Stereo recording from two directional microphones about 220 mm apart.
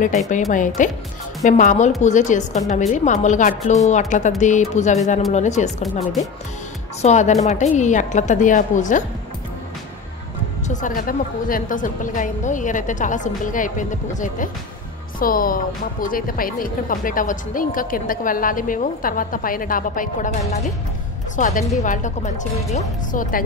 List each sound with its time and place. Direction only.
0.5 s a woman's voice: 35° left (ahead or behind)
10.7 s a woman's voice: 35° left (ahead or behind)